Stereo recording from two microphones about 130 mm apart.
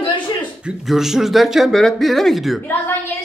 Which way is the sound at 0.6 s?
5° right (ahead or behind).